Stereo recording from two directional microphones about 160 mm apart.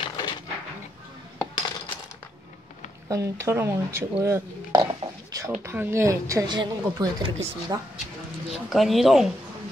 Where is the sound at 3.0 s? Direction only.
20° right (ahead or behind).